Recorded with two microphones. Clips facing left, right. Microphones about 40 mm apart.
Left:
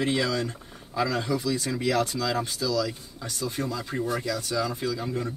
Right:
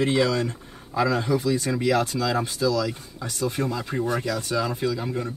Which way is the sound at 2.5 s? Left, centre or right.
Right.